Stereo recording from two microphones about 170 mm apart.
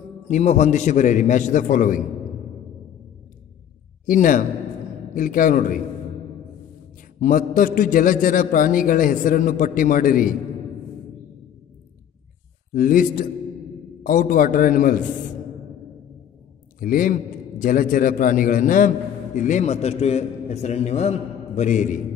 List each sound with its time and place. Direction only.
0.3 s a man's voice: 45° left (ahead or behind)
4.0 s a man's voice: 50° left (ahead or behind)
7.2 s a man's voice: 50° left (ahead or behind)
12.7 s a man's voice: 55° left (ahead or behind)
16.8 s a man's voice: 55° left (ahead or behind)